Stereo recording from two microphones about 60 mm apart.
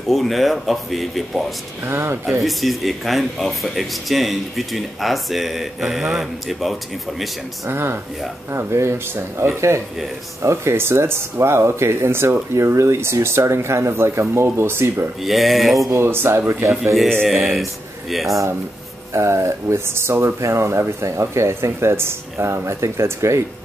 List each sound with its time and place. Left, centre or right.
0.1 s speech: centre
1.9 s speech: right
2.4 s speech: centre
7.6 s speech: right
10.4 s speech: right
15.2 s speech: centre
15.9 s speech: right
17.3 s speech: centre
19.1 s speech: right